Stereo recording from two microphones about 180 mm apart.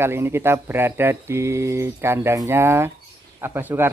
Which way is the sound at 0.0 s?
15° right (ahead or behind).